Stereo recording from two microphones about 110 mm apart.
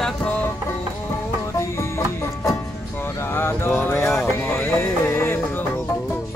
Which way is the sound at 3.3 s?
20° left (ahead or behind).